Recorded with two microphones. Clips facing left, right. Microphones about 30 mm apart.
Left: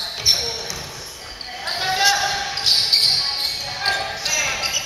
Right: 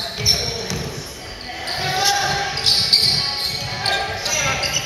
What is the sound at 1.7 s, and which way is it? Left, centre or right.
Basketball bounce, centre.